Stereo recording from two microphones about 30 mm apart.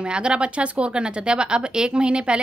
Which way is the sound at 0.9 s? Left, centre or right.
Right.